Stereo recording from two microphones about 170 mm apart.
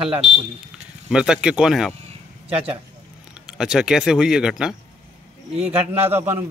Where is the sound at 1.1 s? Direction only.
5° right (ahead or behind).